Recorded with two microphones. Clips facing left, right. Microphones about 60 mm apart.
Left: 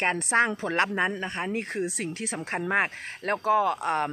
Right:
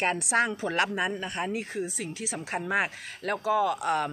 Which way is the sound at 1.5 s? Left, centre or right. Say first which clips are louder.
Left 2 dB; left.